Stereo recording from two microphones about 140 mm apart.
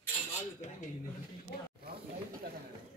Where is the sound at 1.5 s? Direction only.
90° left.